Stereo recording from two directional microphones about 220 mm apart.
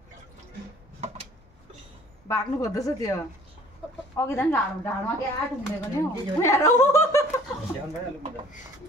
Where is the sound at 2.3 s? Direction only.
15° left (ahead or behind).